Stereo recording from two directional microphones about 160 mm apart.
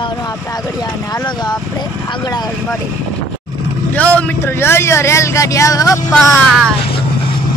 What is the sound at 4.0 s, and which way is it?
Speech, 10° left (ahead or behind).